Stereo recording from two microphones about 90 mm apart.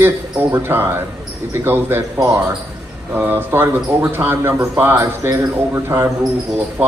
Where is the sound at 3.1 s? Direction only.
20° right (ahead or behind).